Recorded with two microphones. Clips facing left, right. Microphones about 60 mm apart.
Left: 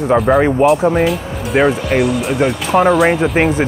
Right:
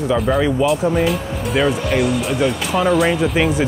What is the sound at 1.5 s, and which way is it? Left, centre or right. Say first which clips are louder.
Speech: left 4 dB; left.